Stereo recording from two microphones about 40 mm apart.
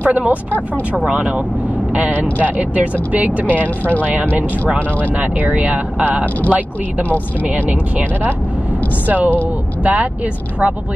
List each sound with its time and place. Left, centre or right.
0.0 s speech: right
0.6 s speech: right
2.1 s speech: left
2.4 s speech: right
3.6 s speech: left
4.0 s speech: right
4.7 s speech: left
5.1 s speech: right
9.0 s speech: right